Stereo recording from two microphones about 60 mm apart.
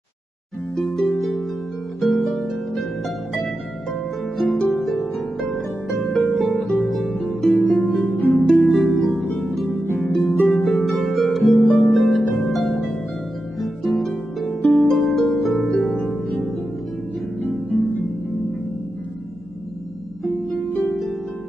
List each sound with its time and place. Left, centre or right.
0.7 s harp: centre
4.4 s harp: centre
15.7 s harp: centre
16.1 s music: centre
17.4 s harp: centre